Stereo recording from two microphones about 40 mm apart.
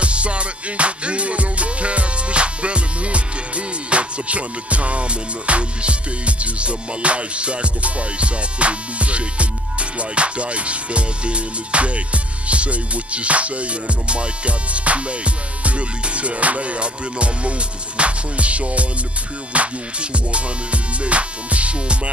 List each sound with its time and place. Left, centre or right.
0.0 s music: right